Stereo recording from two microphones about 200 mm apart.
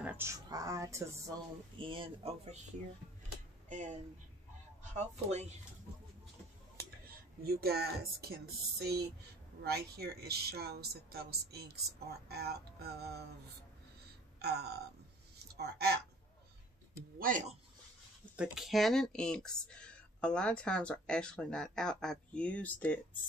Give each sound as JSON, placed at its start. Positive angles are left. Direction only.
{"t": 0.0, "sound": "speech", "side_deg": -15}
{"t": 1.8, "sound": "speech", "side_deg": -25}
{"t": 3.6, "sound": "speech", "side_deg": -40}
{"t": 7.4, "sound": "speech", "side_deg": -50}
{"t": 14.4, "sound": "a sound", "side_deg": -55}
{"t": 17.2, "sound": "speech", "side_deg": -40}
{"t": 18.3, "sound": "speech", "side_deg": -5}